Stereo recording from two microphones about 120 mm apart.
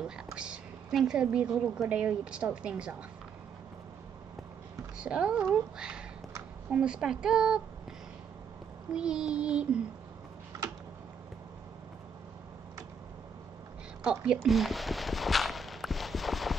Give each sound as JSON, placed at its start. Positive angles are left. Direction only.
{"t": 0.0, "sound": "a woman's voice", "side_deg": -5}
{"t": 4.9, "sound": "speech", "side_deg": -10}
{"t": 8.9, "sound": "speech", "side_deg": -5}
{"t": 14.2, "sound": "walk", "side_deg": -5}